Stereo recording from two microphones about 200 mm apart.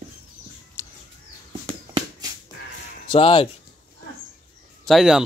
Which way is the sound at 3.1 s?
25° left (ahead or behind).